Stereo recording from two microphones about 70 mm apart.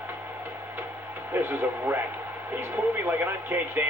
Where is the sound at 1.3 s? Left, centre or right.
Right.